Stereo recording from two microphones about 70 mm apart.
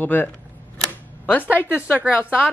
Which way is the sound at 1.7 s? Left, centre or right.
Right.